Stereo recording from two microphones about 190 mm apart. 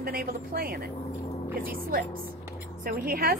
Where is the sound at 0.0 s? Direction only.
50° right (ahead or behind).